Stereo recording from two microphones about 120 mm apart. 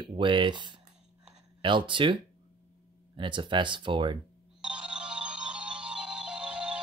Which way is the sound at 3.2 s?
40° right (ahead or behind).